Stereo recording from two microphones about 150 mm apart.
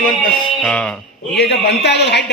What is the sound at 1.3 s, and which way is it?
Speech, 90° left.